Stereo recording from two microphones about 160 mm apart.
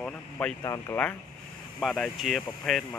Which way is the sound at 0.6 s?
20° left (ahead or behind).